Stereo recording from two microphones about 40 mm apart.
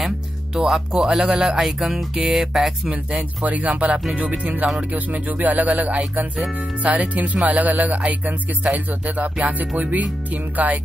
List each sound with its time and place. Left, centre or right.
0.6 s speech: centre
0.9 s speech: centre
1.6 s music: centre
2.3 s speech: centre
2.9 s speech: right